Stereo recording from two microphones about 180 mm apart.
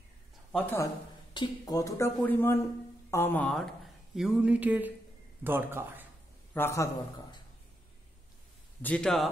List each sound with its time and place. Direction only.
0.5 s speech: 5° left (ahead or behind)
1.3 s a man's voice: 25° left (ahead or behind); by 6.0 s 10° right (ahead or behind)
6.5 s speech: 15° left (ahead or behind)
8.8 s a man's voice: 5° left (ahead or behind)